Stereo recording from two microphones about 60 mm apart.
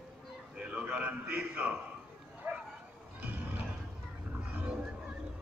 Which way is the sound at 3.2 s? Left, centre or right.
Right.